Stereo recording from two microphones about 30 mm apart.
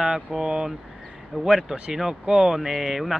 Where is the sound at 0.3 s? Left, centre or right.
Centre.